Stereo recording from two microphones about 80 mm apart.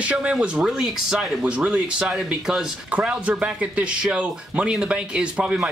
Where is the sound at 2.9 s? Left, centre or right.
Centre.